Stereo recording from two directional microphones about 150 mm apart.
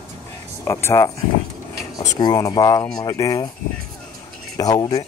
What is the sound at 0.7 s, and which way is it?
Speech, 15° left (ahead or behind).